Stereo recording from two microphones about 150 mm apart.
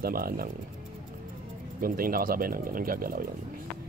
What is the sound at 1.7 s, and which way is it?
Speech, 75° right (ahead or behind).